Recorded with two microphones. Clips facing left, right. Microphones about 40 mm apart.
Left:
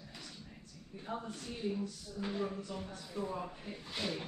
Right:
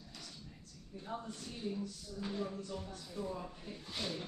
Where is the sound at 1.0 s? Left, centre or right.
Centre.